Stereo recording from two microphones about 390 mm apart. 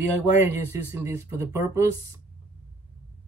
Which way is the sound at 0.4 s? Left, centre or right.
Centre.